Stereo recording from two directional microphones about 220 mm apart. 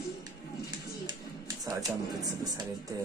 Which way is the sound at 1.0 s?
15° right (ahead or behind).